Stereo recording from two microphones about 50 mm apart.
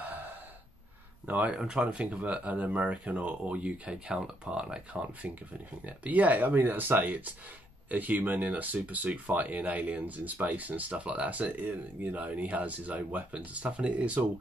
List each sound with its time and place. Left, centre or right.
0.0 s gasp: right
1.2 s speech: right
1.5 s speech: centre